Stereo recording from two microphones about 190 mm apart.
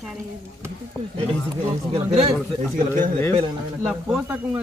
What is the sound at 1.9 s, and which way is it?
Speech, 30° right (ahead or behind).